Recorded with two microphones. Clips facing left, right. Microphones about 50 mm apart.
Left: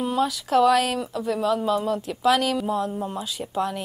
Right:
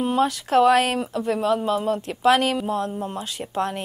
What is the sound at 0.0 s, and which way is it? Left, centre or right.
Speech, right.